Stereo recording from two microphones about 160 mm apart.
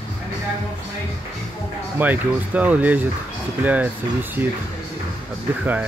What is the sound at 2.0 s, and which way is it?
Speech, 10° right (ahead or behind).